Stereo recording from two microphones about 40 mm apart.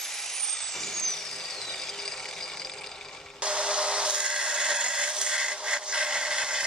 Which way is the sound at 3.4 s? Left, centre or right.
Right.